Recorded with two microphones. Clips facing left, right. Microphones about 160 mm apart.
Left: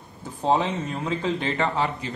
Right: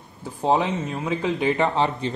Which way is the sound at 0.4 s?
10° right (ahead or behind).